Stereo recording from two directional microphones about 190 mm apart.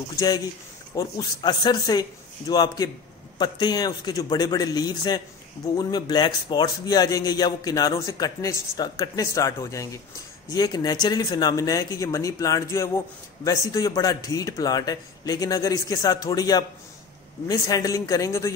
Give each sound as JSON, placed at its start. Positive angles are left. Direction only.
{"t": 0.9, "sound": "speech", "side_deg": 20}